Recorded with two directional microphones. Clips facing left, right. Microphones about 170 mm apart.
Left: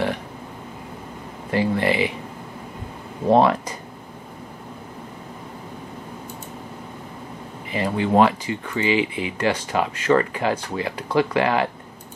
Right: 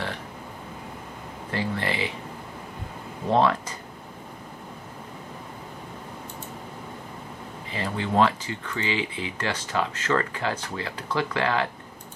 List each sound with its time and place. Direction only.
1.5 s speech: 15° left (ahead or behind)
3.3 s speech: 15° left (ahead or behind)
7.7 s speech: 15° left (ahead or behind)